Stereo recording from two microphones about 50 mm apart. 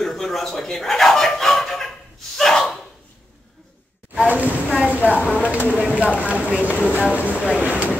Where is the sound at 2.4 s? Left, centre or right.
Centre.